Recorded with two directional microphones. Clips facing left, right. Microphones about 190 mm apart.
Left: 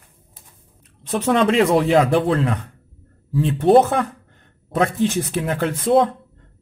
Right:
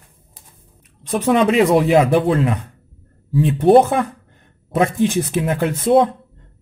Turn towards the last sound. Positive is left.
turn(degrees=-20)  # may be behind; listen again after turning